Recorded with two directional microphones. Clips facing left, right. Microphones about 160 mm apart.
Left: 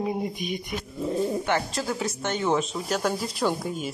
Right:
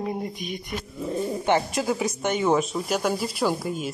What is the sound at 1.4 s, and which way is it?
Speech, 20° right (ahead or behind).